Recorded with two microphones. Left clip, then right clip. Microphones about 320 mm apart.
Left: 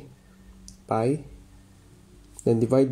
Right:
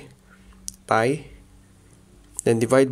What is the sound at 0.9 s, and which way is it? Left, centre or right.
Speech, right.